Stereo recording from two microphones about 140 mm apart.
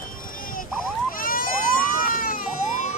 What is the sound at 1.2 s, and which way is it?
Baby cry, 85° left.